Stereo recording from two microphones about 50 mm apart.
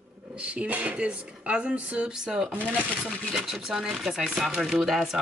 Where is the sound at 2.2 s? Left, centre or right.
Centre.